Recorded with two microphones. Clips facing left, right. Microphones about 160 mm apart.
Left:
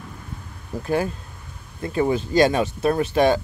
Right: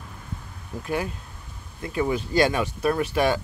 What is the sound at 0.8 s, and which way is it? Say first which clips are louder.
Speech: left 5 dB; 35° left (ahead or behind).